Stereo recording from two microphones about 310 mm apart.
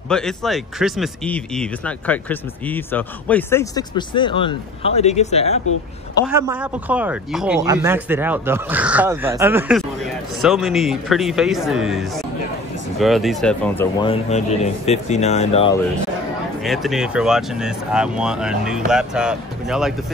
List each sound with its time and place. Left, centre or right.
0.1 s speech: centre
6.2 s speech: centre
14.0 s speech: centre
16.6 s speech: centre